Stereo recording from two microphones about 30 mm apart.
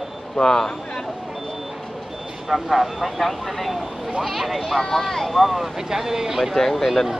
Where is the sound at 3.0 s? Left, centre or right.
Centre.